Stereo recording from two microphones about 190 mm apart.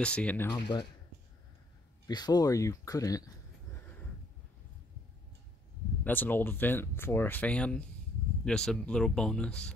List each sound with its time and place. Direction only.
0.0 s speech: 5° left (ahead or behind)
0.5 s speech: 25° left (ahead or behind)
2.0 s speech: 20° left (ahead or behind)
6.0 s speech: 10° left (ahead or behind)